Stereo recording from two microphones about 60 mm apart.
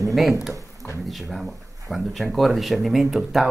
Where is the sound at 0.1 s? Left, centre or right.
Centre.